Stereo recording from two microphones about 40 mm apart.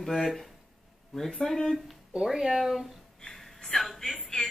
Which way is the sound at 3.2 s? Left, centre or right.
Centre.